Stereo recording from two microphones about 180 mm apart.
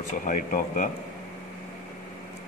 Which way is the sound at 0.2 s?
50° left (ahead or behind).